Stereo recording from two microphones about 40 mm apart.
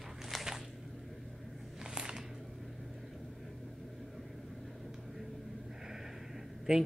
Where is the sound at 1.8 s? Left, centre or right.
Centre.